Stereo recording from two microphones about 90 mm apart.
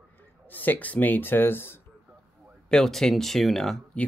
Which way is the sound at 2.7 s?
5° left (ahead or behind).